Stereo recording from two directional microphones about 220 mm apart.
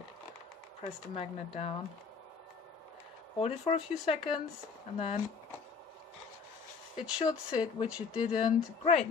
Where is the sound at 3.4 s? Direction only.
30° left (ahead or behind).